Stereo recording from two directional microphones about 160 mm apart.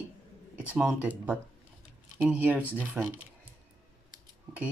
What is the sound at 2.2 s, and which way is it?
Speech, 10° right (ahead or behind).